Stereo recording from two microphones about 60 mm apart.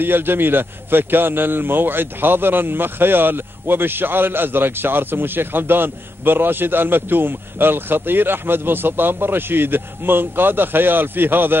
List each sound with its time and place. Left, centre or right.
0.0 s a man's voice: right